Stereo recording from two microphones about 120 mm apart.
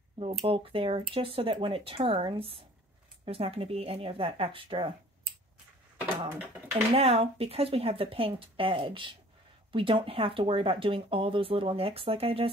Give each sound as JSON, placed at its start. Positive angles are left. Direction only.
{"t": 0.2, "sound": "speech", "side_deg": -50}
{"t": 5.9, "sound": "a sound", "side_deg": -15}
{"t": 6.7, "sound": "speech", "side_deg": -55}